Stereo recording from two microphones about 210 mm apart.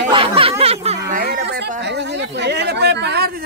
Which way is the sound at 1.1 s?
45° right (ahead or behind).